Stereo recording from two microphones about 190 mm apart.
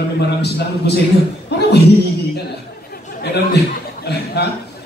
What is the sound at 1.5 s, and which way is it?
Chuckle, 60° left (ahead or behind).